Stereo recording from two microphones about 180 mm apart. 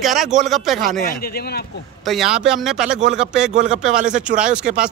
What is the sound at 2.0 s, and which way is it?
Speech, centre (ahead or behind).